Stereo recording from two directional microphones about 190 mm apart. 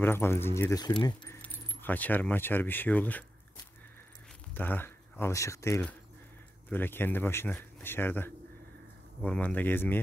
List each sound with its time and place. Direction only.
0.0 s speech: 10° left (ahead or behind)
1.4 s speech: 10° left (ahead or behind)
4.6 s speech: 10° left (ahead or behind)